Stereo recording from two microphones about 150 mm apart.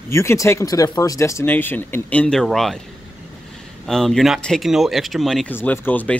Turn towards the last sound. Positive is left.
turn(degrees=10)  # may be behind; listen again after turning